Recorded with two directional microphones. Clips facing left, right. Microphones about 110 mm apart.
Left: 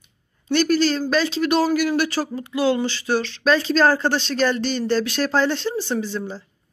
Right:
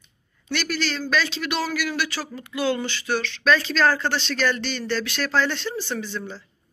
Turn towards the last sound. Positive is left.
turn(degrees=35)  # may be behind; listen again after turning